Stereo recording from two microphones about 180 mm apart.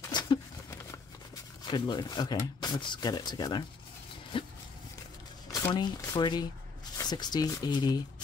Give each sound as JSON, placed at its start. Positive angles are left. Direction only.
{"t": 0.0, "sound": "a sound", "side_deg": 25}
{"t": 1.7, "sound": "speech", "side_deg": 25}
{"t": 5.7, "sound": "speech", "side_deg": 25}